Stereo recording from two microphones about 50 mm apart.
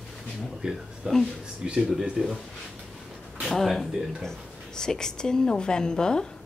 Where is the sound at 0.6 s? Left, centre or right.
Centre.